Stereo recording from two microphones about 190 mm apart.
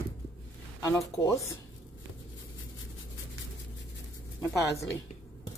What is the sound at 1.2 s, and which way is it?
Speech, 15° left (ahead or behind).